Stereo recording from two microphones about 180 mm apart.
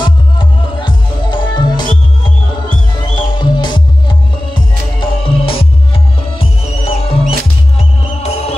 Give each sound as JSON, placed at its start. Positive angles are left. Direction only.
{"t": 0.0, "sound": "music", "side_deg": 25}
{"t": 3.3, "sound": "music", "side_deg": 25}